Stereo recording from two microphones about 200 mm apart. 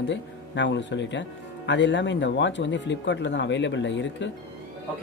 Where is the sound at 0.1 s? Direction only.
65° left (ahead or behind).